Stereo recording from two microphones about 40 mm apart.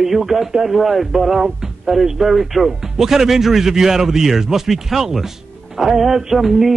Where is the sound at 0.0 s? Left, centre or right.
Centre.